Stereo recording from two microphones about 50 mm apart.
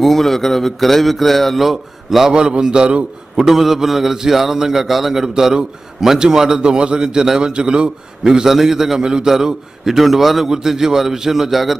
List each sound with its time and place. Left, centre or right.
0.0 s a man's voice: centre
3.4 s a man's voice: centre
8.3 s a man's voice: centre